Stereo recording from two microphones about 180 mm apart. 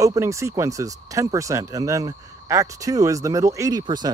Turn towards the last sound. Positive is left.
turn(degrees=-25)  # may be behind; listen again after turning